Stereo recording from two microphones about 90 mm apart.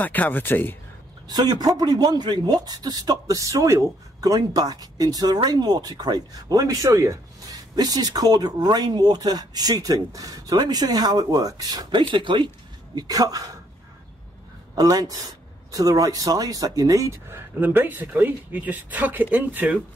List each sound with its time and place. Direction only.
0.0 s speech: 20° left (ahead or behind)
1.3 s speech: 50° right (ahead or behind)
12.1 s speech: 65° right (ahead or behind)
12.9 s speech: 50° right (ahead or behind)
14.8 s speech: 45° right (ahead or behind)
17.6 s speech: 20° right (ahead or behind)